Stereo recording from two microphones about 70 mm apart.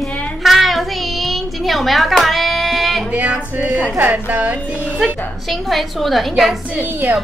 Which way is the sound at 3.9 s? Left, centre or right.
Right.